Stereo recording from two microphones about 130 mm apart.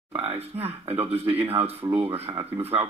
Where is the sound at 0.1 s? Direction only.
50° right (ahead or behind).